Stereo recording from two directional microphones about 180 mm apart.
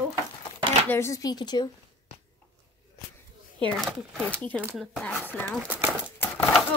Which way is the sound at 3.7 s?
Centre (ahead or behind).